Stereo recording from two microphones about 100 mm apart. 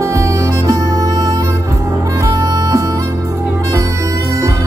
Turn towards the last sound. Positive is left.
turn(degrees=-35)  # may be behind; listen again after turning